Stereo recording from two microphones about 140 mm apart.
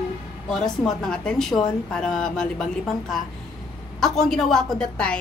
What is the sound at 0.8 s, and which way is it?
A woman's voice, 5° left (ahead or behind).